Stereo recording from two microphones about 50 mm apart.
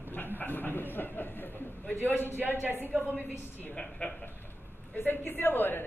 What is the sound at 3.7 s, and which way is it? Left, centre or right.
Speech, left.